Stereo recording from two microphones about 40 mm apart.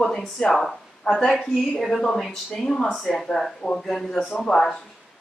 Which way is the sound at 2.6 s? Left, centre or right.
Centre.